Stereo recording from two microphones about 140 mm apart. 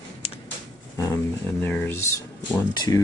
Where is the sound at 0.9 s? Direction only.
25° left (ahead or behind).